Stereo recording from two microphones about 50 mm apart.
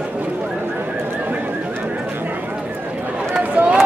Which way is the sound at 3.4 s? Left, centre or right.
Right.